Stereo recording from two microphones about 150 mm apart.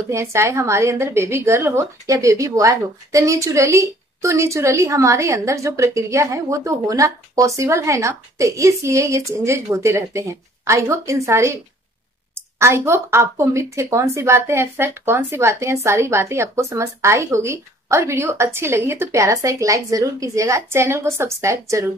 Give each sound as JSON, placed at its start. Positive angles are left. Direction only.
{"t": 0.1, "sound": "a woman's voice", "side_deg": -20}